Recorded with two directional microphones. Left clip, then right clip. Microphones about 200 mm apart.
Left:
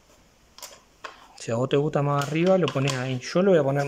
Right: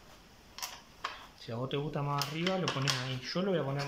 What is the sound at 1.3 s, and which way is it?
Speech, 70° left (ahead or behind).